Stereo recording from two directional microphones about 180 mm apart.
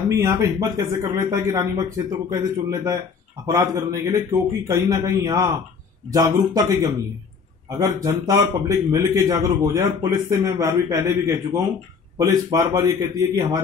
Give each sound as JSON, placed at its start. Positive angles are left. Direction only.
{"t": 0.1, "sound": "a man's voice", "side_deg": -15}
{"t": 8.0, "sound": "speech", "side_deg": -20}